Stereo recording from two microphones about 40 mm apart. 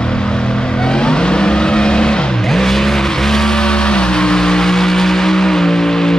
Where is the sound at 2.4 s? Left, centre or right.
Centre.